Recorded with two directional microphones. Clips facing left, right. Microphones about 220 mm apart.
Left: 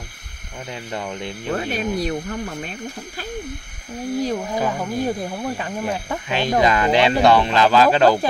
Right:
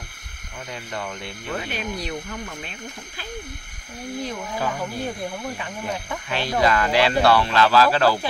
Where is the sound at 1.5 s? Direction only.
45° left (ahead or behind).